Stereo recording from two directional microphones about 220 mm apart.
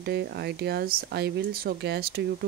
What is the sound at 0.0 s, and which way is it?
Speech, 45° right (ahead or behind).